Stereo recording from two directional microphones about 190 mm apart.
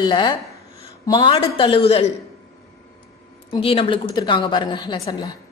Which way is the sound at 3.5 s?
30° left (ahead or behind).